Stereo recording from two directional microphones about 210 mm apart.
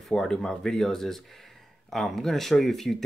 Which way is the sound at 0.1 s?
5° left (ahead or behind).